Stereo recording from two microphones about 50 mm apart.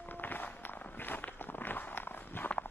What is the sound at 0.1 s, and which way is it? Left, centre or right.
Walk, left.